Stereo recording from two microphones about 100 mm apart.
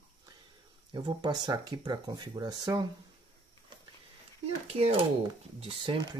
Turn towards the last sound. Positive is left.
turn(degrees=-70)  # may be behind; listen again after turning